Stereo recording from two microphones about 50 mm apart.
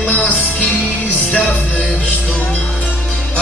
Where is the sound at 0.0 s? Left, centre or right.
Left.